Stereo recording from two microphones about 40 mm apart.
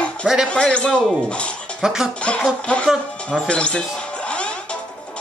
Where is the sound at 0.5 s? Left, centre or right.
Left.